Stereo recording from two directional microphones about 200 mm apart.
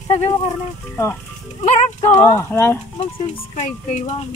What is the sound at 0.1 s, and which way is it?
Speech, 30° left (ahead or behind).